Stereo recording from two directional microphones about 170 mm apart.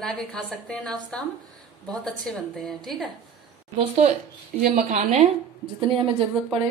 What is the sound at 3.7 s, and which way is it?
A woman's voice, 35° right (ahead or behind).